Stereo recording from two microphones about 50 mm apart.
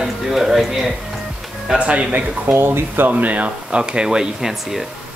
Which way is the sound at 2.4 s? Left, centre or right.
Right.